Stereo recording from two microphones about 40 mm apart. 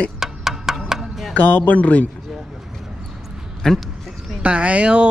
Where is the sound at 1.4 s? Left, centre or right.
Left.